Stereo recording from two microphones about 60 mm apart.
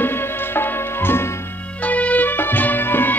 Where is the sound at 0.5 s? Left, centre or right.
Left.